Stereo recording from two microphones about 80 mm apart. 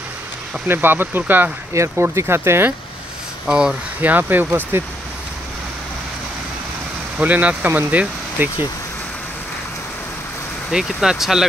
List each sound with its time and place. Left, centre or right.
0.7 s speech: right
1.7 s speech: right
3.4 s speech: centre
4.0 s speech: right
7.2 s speech: centre
10.7 s speech: centre